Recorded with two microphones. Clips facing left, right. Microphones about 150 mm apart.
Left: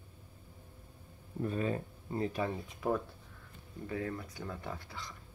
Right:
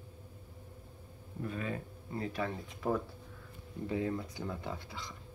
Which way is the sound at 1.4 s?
35° left (ahead or behind).